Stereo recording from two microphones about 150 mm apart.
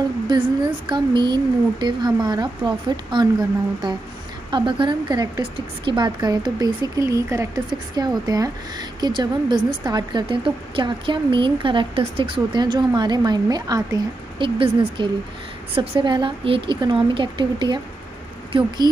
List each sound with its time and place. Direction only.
0.3 s speech: 30° right (ahead or behind)
14.6 s a woman's voice: 35° right (ahead or behind)